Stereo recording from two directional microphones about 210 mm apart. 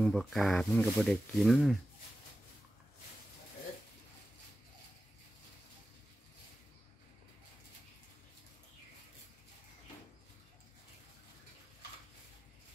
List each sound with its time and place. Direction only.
0.0 s speech: centre (ahead or behind)